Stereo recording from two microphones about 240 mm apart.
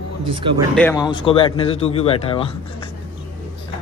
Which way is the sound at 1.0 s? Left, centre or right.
Left.